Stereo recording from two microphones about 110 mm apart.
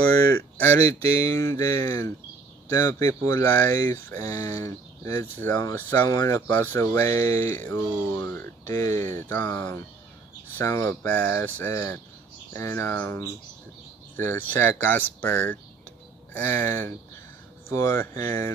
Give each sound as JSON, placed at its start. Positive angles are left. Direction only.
{"t": 1.2, "sound": "speech", "side_deg": 25}
{"t": 6.4, "sound": "speech", "side_deg": 20}
{"t": 10.6, "sound": "speech", "side_deg": 25}